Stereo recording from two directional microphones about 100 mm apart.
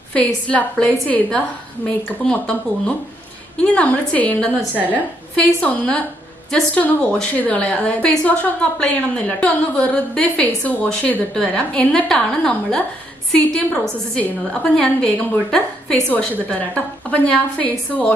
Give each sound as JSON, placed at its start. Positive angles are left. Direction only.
{"t": 0.1, "sound": "a woman's voice", "side_deg": 15}
{"t": 3.6, "sound": "a woman's voice", "side_deg": 15}